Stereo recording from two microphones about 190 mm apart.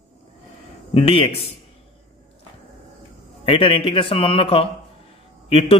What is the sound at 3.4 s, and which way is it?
Speech, 30° left (ahead or behind).